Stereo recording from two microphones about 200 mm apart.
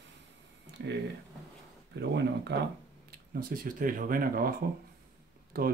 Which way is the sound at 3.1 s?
45° right (ahead or behind).